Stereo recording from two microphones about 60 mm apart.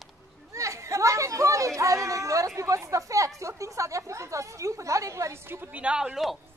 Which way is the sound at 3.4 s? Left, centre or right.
Right.